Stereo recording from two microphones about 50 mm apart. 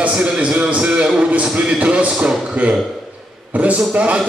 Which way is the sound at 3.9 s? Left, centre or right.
Right.